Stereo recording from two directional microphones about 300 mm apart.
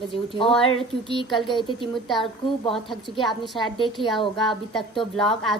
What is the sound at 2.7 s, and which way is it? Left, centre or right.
Speech, centre.